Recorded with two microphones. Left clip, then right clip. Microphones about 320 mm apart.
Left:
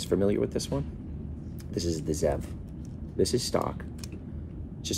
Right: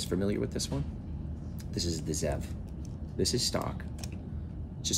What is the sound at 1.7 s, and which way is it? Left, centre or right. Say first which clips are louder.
Speech: left 4 dB; centre.